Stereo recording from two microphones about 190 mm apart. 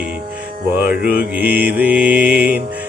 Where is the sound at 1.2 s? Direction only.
10° right (ahead or behind).